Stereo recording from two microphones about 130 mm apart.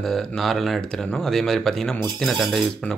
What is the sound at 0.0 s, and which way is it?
Speech, 5° left (ahead or behind).